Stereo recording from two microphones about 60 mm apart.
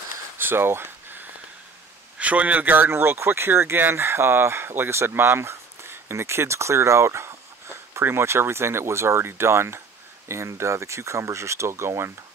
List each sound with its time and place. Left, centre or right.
0.4 s a sound: right
2.1 s a man's voice: right
2.9 s speech: right